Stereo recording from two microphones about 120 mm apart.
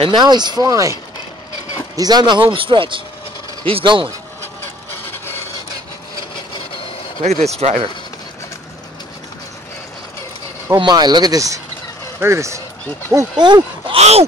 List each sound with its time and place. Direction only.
0.0 s speech: 40° right (ahead or behind)
2.0 s speech: 35° right (ahead or behind)
7.2 s speech: 65° right (ahead or behind)
10.8 s speech: 35° right (ahead or behind)
13.4 s speech: 40° right (ahead or behind)
13.9 s a sound: 60° right (ahead or behind)